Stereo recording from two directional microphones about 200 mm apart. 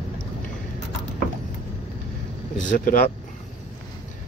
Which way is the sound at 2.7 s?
45° left (ahead or behind).